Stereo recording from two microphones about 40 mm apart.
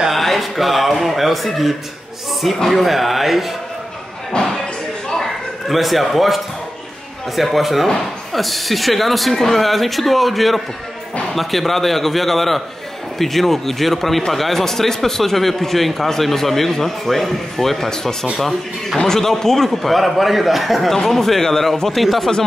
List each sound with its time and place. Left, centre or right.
0.1 s speech: centre
4.4 s slam: left
5.1 s a sound: centre
7.3 s a man's voice: centre
20.9 s a man's voice: centre